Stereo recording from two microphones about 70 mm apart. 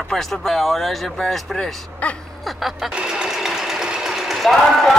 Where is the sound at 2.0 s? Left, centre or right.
Left.